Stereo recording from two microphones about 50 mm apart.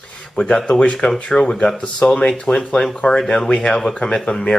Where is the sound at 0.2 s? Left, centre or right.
Centre.